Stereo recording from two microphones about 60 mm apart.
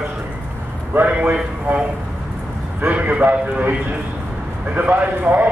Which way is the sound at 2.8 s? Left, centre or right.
Right.